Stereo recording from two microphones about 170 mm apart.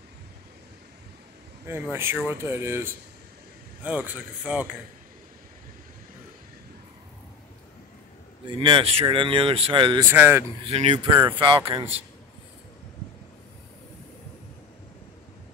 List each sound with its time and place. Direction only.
1.7 s speech: 15° right (ahead or behind)
8.5 s speech: 30° right (ahead or behind)
10.0 s speech: 10° right (ahead or behind)
10.6 s speech: 40° right (ahead or behind)